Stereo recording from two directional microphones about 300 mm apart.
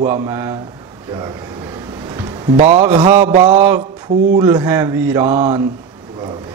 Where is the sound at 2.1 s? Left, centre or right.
Centre.